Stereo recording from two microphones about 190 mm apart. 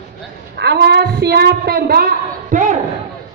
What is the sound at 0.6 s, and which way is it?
A woman's voice, 60° right (ahead or behind).